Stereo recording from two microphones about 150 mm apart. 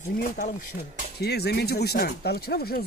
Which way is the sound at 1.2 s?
90° left.